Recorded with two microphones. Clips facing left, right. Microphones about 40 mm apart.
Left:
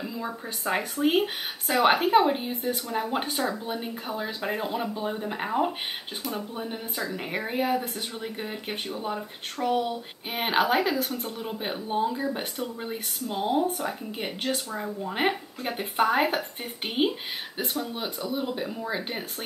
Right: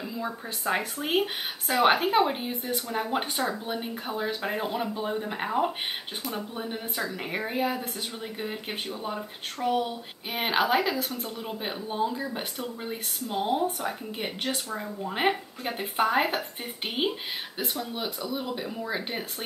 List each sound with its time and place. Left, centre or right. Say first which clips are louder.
0.1 s speech: even; centre
3.9 s speech: right 1 dB; centre
6.3 s speech: even; centre
7.2 s speech: left 1 dB; centre
11.0 s speech: left 2 dB; left
11.5 s speech: left 3 dB; centre